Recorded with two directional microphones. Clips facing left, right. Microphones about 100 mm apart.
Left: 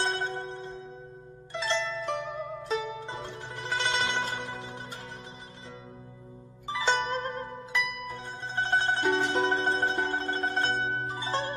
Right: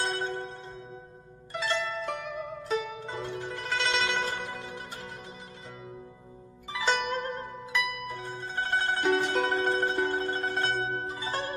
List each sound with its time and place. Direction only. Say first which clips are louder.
0.0 s a sound: left 1 dB; 30° left (ahead or behind)
1.5 s music: even; 20° left (ahead or behind)
3.2 s zither: right 3 dB; 25° left (ahead or behind)
7.0 s zither: left 1 dB; 30° left (ahead or behind)